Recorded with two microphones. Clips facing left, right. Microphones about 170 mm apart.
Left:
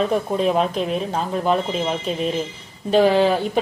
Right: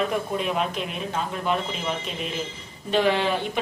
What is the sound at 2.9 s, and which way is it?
Speech, 35° left (ahead or behind).